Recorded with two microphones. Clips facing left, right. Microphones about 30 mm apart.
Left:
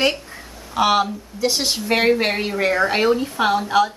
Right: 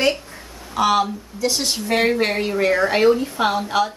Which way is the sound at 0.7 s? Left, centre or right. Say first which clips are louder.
Even; centre.